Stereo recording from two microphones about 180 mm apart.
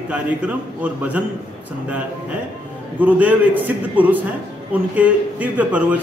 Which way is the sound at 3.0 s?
10° right (ahead or behind).